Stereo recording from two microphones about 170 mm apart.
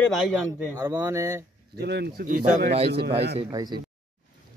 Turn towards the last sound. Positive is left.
turn(degrees=-25)  # may be behind; listen again after turning